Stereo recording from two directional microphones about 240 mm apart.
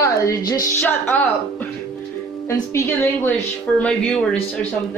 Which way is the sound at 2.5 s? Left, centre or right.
Centre.